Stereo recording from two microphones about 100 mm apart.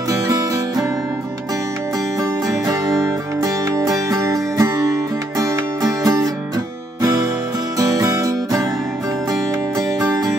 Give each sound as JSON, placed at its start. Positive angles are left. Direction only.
{"t": 0.1, "sound": "music", "side_deg": -35}
{"t": 3.0, "sound": "music", "side_deg": -35}
{"t": 7.8, "sound": "music", "side_deg": -35}
{"t": 9.9, "sound": "music", "side_deg": -40}